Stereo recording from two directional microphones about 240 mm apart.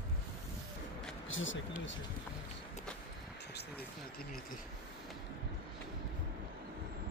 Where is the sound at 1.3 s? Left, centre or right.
Left.